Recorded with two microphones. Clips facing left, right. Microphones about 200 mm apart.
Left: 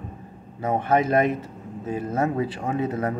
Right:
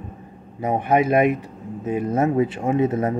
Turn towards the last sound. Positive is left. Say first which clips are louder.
# right 5 dB
turn(degrees=-20)  # may be behind; listen again after turning